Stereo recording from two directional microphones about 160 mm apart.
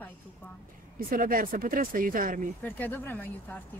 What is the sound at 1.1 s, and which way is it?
Speech, 60° right (ahead or behind).